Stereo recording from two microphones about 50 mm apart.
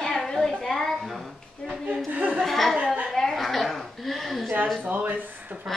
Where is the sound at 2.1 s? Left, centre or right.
Right.